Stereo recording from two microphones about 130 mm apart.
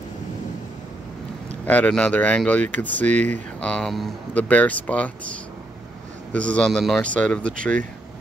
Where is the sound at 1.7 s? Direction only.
10° left (ahead or behind).